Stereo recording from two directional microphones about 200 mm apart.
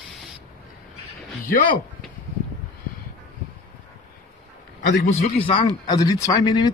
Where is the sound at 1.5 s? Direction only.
45° left (ahead or behind).